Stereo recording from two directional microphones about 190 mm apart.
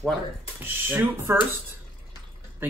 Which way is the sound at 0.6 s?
10° right (ahead or behind).